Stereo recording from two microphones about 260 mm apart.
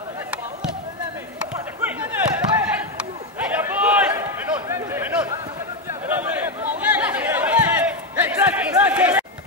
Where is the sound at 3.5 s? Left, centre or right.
Centre.